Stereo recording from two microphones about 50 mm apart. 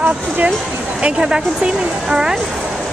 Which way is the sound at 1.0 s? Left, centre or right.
Centre.